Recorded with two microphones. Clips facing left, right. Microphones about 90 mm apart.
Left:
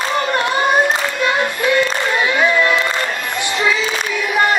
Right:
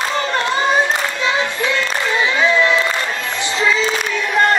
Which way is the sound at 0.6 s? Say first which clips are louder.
Left 1 dB; 5° left (ahead or behind).